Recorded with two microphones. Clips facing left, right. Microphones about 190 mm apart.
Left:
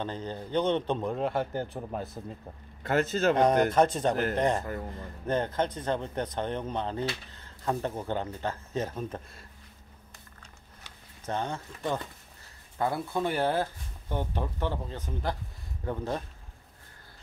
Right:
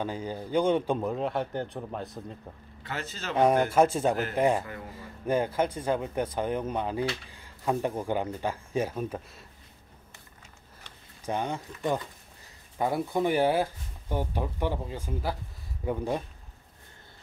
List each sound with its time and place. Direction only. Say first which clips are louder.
0.0 s a man's voice: right 2 dB; 10° right (ahead or behind)
2.8 s a man's voice: left 12 dB; 50° left (ahead or behind)
3.3 s speech: right 3 dB; 5° right (ahead or behind)
11.2 s speech: right 2 dB; 15° right (ahead or behind)